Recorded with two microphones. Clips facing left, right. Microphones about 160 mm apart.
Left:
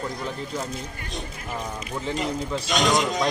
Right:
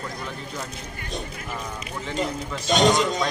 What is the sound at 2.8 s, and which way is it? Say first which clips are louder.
Speech: right 2 dB; centre (ahead or behind).